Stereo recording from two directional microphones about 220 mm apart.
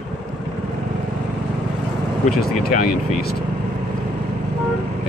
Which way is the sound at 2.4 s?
40° left (ahead or behind).